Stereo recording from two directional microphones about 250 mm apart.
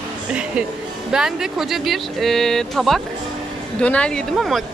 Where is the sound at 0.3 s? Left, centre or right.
Centre.